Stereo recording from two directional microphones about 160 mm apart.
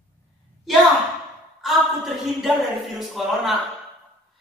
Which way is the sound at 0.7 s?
Centre (ahead or behind).